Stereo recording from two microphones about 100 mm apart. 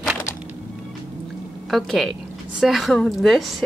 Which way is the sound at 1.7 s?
Centre (ahead or behind).